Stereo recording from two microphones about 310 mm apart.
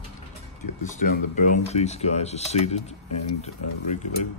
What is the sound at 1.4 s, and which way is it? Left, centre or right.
Speech, left.